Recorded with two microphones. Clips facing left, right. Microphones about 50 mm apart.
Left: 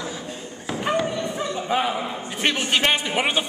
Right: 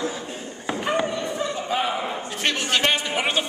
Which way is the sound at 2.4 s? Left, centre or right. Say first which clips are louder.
Left 1 dB; centre.